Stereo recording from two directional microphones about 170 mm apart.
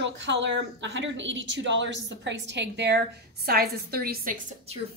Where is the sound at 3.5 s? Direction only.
65° right (ahead or behind).